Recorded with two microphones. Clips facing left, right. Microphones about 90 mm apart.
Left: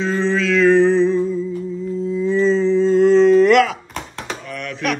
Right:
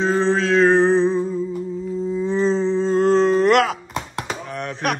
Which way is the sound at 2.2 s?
35° right (ahead or behind).